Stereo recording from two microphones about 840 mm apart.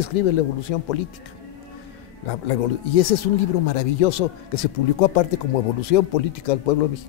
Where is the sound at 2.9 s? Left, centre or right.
Left.